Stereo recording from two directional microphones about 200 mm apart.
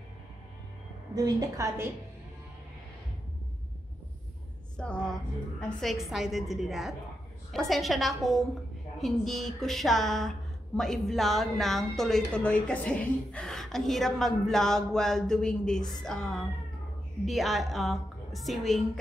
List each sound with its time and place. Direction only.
1.1 s a woman's voice: 15° right (ahead or behind)
4.7 s a woman's voice: 5° left (ahead or behind)